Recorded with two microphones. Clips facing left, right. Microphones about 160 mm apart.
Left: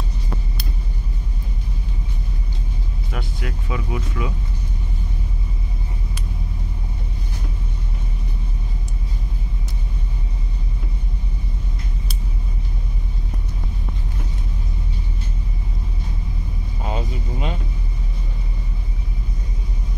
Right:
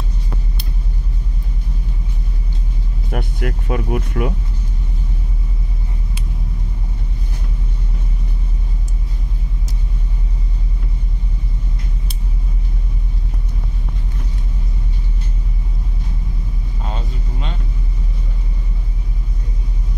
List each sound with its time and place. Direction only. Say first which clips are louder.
3.1 s speech: right 7 dB; 55° right (ahead or behind)
16.8 s vehicle: left 3 dB; 10° left (ahead or behind)